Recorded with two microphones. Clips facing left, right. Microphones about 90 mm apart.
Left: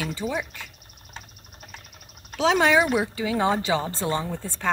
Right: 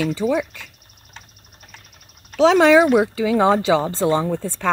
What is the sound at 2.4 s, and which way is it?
Speech, 90° right.